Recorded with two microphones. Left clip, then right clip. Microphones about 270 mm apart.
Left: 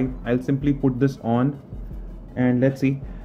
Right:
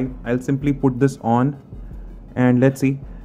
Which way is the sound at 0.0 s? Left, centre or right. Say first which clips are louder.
Right 1 dB; centre.